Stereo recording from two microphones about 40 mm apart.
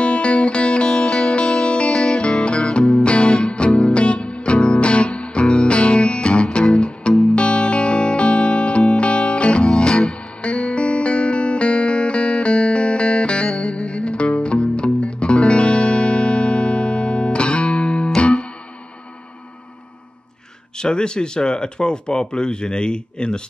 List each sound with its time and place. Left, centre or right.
0.0 s music: left
0.8 s music: centre
2.2 s music: left
9.7 s music: centre
10.4 s music: left
20.7 s speech: left